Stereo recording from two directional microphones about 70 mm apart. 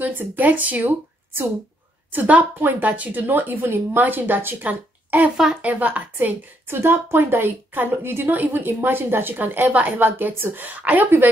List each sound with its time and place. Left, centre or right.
0.0 s a woman's voice: right